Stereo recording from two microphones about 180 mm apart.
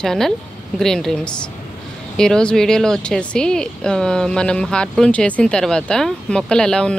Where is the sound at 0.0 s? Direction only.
Centre (ahead or behind).